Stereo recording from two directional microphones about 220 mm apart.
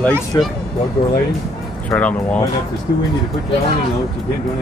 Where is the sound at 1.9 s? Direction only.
5° left (ahead or behind).